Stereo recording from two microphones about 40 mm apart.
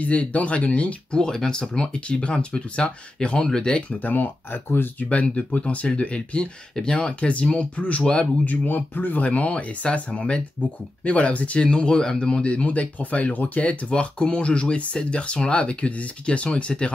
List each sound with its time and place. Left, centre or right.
0.0 s speech: left
1.1 s speech: centre
4.0 s speech: left
5.1 s speech: left
8.5 s speech: left
11.6 s speech: left